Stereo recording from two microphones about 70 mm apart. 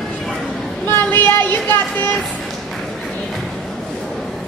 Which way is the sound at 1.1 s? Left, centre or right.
Left.